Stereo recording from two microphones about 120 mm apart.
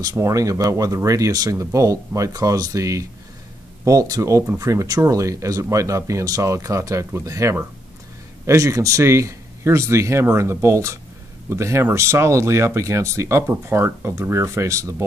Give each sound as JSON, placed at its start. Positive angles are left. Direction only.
{"t": 0.0, "sound": "speech", "side_deg": -25}